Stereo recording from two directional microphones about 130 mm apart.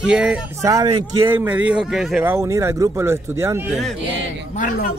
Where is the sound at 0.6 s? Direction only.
25° right (ahead or behind).